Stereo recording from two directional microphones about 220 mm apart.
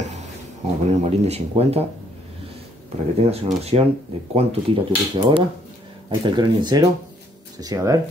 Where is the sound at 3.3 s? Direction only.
30° right (ahead or behind).